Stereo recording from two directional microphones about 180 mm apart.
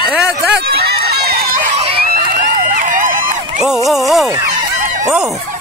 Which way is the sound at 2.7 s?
45° right (ahead or behind).